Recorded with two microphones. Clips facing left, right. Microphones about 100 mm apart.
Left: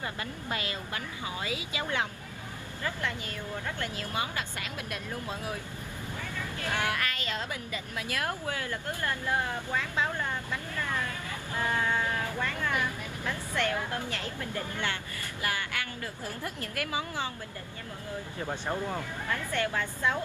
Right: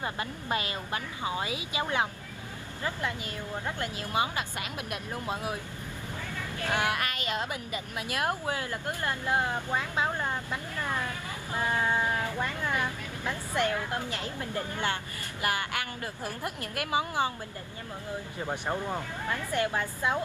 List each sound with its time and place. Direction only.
0.0 s speech: 25° right (ahead or behind)
6.6 s speech: 20° right (ahead or behind)
16.4 s speech: 20° right (ahead or behind)
18.5 s speech: 15° right (ahead or behind)